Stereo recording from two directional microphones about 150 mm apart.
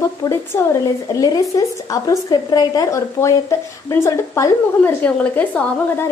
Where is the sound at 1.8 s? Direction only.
25° left (ahead or behind).